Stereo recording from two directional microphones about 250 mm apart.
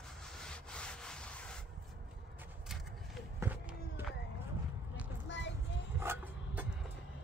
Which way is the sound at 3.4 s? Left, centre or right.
Centre.